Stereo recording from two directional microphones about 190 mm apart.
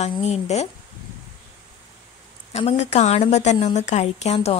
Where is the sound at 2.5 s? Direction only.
35° left (ahead or behind).